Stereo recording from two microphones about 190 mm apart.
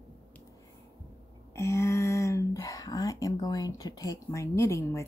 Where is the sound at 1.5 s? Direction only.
15° left (ahead or behind).